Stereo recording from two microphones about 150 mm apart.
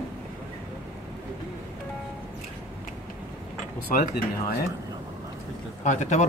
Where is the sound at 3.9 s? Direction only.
90° left.